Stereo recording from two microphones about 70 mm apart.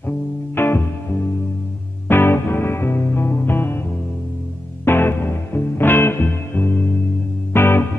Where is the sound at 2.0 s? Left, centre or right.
Left.